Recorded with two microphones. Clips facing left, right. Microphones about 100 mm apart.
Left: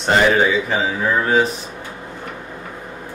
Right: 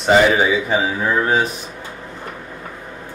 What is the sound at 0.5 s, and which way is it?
Speech, 15° right (ahead or behind).